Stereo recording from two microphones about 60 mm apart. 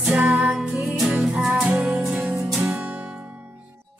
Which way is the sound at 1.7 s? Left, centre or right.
Right.